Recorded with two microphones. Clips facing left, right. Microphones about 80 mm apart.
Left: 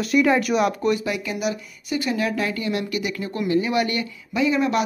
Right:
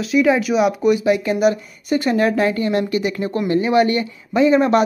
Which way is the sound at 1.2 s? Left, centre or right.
Right.